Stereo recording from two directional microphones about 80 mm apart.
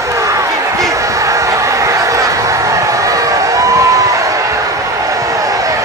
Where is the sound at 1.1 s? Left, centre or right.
Right.